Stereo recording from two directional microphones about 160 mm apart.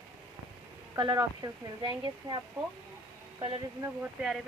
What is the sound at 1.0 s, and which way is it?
Speech, 25° right (ahead or behind).